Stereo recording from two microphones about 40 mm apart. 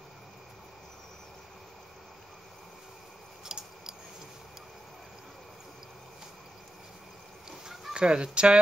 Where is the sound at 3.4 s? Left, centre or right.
Centre.